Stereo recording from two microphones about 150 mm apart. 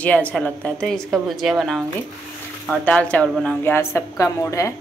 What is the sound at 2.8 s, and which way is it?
A woman's voice, 10° left (ahead or behind).